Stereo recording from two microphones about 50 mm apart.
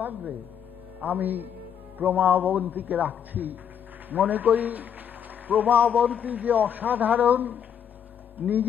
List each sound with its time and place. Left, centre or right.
0.0 s a man's voice: right
5.9 s a man's voice: right